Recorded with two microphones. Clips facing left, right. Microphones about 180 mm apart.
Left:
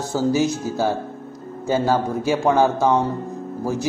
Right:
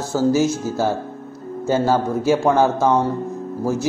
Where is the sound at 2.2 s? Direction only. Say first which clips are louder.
Right 2 dB; 15° left (ahead or behind).